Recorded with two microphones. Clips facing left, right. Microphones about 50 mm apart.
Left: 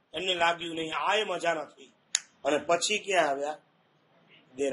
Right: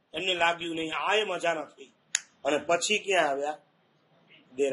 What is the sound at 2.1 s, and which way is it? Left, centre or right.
Finger snapping, right.